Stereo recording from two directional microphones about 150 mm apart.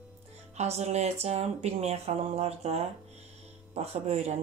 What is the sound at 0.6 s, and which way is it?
Speech, 50° right (ahead or behind).